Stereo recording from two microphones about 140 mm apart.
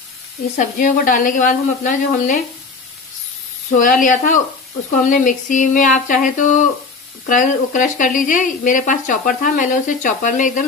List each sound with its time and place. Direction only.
0.6 s speech: 70° left (ahead or behind)
4.0 s speech: 70° left (ahead or behind)